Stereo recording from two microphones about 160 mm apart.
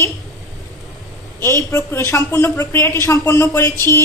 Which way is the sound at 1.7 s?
15° left (ahead or behind).